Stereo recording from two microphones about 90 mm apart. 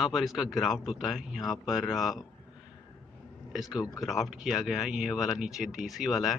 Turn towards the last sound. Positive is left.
turn(degrees=-5)  # may be behind; listen again after turning